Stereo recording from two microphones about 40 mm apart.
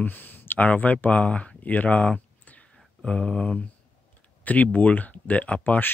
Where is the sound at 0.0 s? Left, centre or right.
Left.